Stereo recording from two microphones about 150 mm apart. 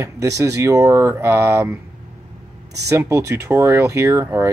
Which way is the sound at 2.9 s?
20° right (ahead or behind).